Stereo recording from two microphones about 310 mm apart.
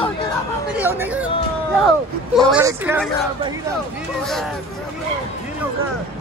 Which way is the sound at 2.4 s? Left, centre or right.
Centre.